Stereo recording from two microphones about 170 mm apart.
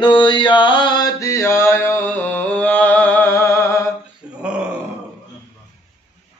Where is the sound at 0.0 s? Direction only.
30° left (ahead or behind).